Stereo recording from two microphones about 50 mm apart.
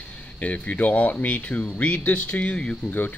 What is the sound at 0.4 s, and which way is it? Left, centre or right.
Speech, left.